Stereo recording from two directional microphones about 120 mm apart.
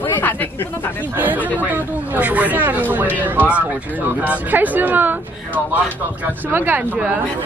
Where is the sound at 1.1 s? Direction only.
15° right (ahead or behind).